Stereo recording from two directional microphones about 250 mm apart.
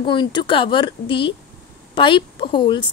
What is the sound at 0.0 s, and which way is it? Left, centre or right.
A woman's voice, centre.